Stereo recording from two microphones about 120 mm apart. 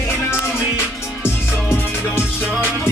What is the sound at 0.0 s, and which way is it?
Music, 20° left (ahead or behind).